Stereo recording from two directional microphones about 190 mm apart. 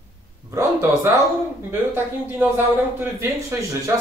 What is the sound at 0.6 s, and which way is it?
Speech, 15° right (ahead or behind).